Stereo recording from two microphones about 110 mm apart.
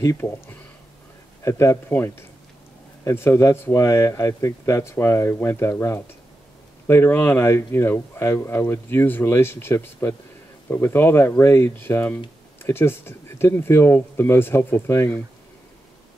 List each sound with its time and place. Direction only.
0.0 s speech: 25° left (ahead or behind)